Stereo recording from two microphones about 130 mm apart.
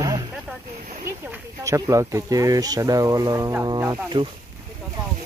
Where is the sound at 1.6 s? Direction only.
25° right (ahead or behind).